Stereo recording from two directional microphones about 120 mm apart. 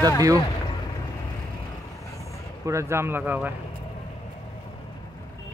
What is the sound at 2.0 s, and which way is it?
Vehicle, 25° left (ahead or behind).